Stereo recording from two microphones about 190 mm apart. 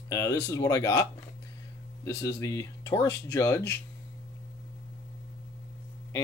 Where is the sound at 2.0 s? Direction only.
15° left (ahead or behind).